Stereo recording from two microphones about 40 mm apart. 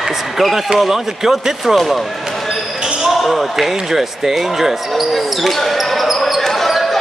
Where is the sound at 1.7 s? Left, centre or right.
Centre.